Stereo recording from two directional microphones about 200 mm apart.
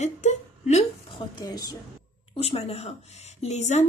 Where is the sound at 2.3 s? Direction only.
30° left (ahead or behind).